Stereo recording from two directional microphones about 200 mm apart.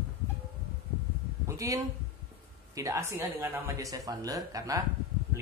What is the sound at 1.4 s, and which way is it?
A man's voice, 15° right (ahead or behind).